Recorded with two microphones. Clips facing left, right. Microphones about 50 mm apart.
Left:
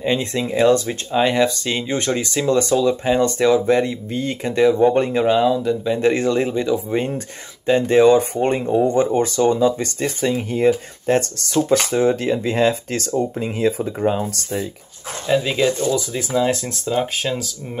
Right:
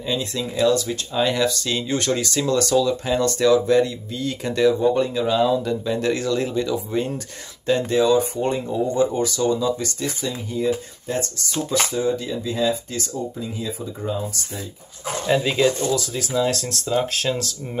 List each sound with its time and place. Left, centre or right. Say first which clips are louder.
0.0 s speech: left 5 dB; left
4.9 s speech: left 4 dB; left
5.5 s speech: left 2 dB; centre
5.9 s speech: left 5 dB; left
7.9 s speech: left 6 dB; left
11.9 s speech: left 6 dB; left
15.2 s speech: left 1 dB; centre
15.9 s speech: left 3 dB; centre